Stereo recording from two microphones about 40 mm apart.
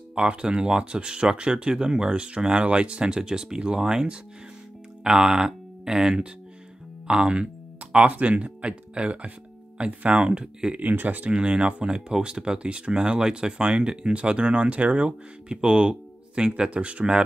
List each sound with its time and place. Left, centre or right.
0.1 s speech: right
8.1 s speech: right
10.8 s speech: right
11.3 s speech: right